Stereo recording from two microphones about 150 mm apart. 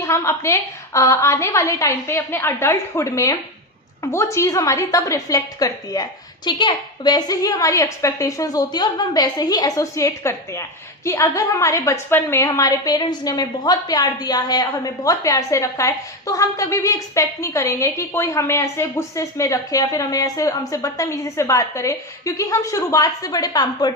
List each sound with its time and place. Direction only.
0.0 s a woman's voice: 20° left (ahead or behind)